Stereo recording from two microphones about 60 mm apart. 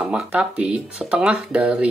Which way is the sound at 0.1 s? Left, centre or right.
Centre.